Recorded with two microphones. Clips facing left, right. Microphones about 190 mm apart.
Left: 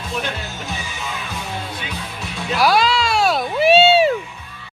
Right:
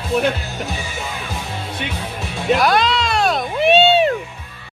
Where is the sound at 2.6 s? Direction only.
5° left (ahead or behind).